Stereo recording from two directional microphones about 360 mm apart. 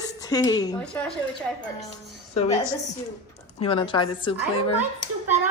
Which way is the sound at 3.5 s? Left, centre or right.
Centre.